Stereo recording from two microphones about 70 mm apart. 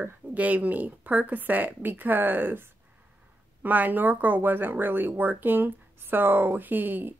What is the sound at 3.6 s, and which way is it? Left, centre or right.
Speech, right.